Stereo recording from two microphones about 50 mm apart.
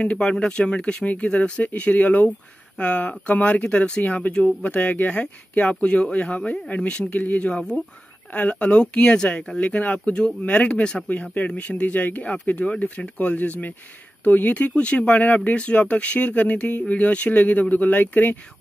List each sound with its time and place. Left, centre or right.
0.0 s speech: left
11.1 s speech: left